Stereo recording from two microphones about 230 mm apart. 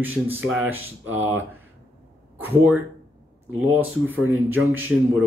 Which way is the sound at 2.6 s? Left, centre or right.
Centre.